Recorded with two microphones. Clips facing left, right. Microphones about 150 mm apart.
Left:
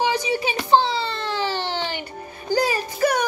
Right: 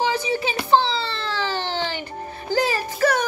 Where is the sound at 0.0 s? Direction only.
15° left (ahead or behind).